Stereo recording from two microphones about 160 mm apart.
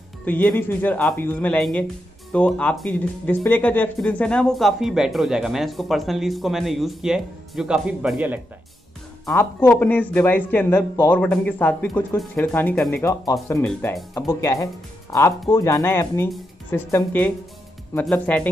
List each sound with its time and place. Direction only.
0.2 s a man's voice: 10° left (ahead or behind); by 8.4 s 10° right (ahead or behind)
9.2 s a man's voice: 15° left (ahead or behind)
13.0 s a man's voice: 20° left (ahead or behind)